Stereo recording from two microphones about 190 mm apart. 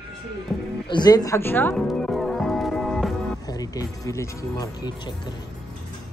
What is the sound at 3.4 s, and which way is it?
Speech, 20° left (ahead or behind).